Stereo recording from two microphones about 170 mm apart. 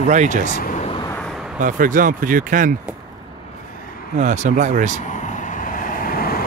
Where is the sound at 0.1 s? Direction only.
45° right (ahead or behind).